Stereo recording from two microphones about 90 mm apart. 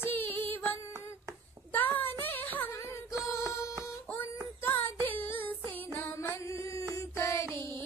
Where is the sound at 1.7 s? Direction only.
20° left (ahead or behind).